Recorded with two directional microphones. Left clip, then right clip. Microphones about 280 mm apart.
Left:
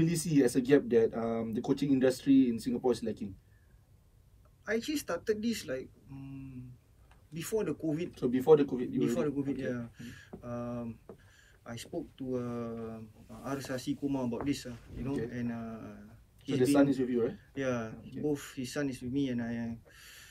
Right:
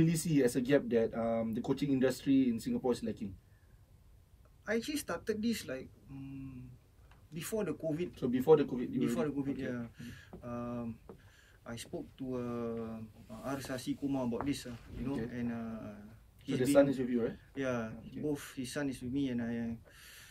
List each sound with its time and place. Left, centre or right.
0.0 s speech: left
4.6 s speech: centre
7.3 s speech: centre
8.1 s speech: centre
9.0 s speech: centre
16.6 s speech: left
17.3 s speech: centre